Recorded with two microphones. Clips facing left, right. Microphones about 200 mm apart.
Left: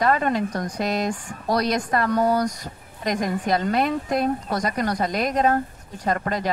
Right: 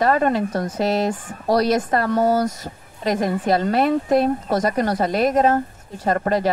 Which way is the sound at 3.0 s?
30° right (ahead or behind).